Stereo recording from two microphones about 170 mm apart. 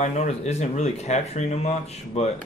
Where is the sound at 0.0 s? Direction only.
45° left (ahead or behind).